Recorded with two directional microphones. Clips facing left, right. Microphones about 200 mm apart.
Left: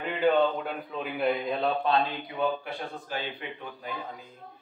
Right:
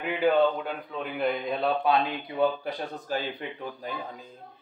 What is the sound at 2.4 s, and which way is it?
Speech, 40° right (ahead or behind).